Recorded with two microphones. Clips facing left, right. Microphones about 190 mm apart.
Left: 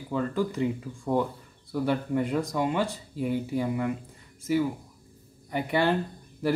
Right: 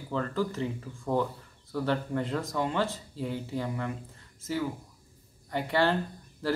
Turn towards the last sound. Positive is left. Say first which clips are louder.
# left 4 dB
turn(degrees=15)  # may be behind; listen again after turning